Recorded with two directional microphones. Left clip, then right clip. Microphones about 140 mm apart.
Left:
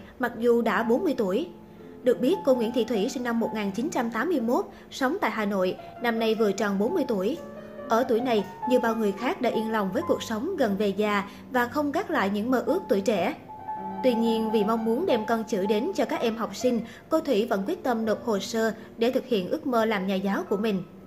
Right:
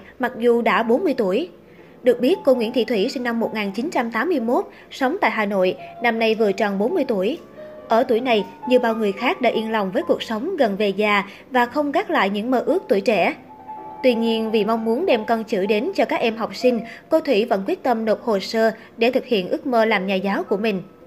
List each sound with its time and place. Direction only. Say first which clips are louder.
0.2 s a woman's voice: right 5 dB; 20° right (ahead or behind)
2.9 s a woman's voice: right 6 dB; 50° left (ahead or behind)
3.9 s a woman's voice: right 6 dB; 15° right (ahead or behind)